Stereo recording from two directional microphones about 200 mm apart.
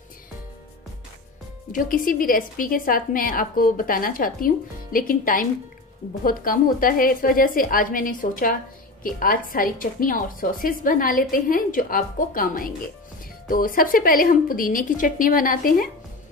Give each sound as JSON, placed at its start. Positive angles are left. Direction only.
{"t": 1.7, "sound": "a woman's voice", "side_deg": 45}